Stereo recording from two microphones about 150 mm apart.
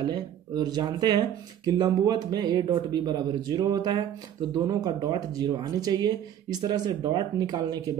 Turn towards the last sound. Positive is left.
turn(degrees=-25)  # may be behind; listen again after turning